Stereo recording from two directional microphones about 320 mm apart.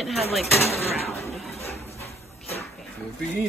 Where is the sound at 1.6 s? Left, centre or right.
Centre.